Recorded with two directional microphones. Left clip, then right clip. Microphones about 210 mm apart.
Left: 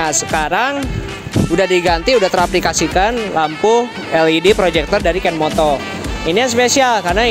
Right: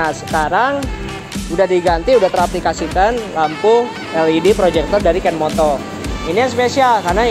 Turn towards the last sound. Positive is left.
turn(degrees=55)  # may be behind; listen again after turning